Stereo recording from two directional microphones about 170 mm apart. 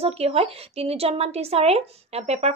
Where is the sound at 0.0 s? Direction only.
35° right (ahead or behind).